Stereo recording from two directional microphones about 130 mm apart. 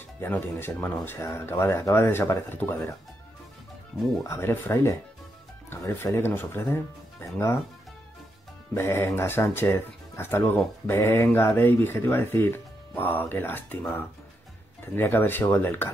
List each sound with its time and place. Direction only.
0.2 s speech: 15° left (ahead or behind)
4.2 s speech: 20° left (ahead or behind)
8.7 s speech: 20° left (ahead or behind)